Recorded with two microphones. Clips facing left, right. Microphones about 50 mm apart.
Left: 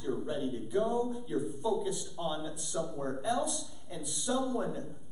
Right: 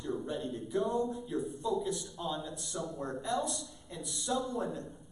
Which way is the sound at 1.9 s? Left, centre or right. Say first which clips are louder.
Left 1 dB; centre.